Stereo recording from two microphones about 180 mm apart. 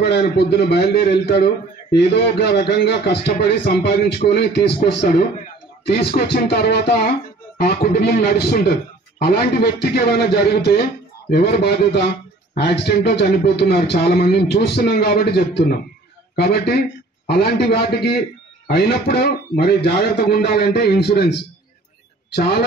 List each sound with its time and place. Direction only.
0.0 s a man's voice: 65° left (ahead or behind)
4.7 s a man's voice: 50° left (ahead or behind)